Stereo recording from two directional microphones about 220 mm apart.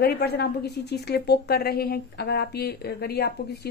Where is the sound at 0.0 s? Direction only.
45° left (ahead or behind).